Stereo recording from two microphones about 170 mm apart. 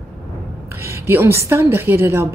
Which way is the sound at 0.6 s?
15° right (ahead or behind).